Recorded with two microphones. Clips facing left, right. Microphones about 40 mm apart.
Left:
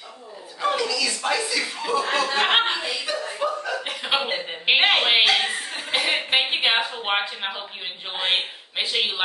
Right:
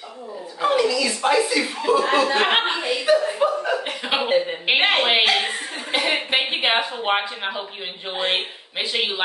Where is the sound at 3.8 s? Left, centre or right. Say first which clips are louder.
Right 1 dB; centre.